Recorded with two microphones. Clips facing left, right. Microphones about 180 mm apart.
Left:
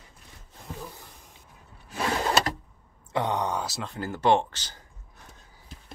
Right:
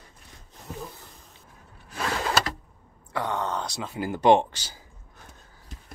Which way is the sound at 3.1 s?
20° left (ahead or behind).